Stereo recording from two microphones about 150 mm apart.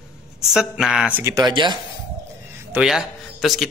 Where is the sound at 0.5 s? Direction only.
5° right (ahead or behind).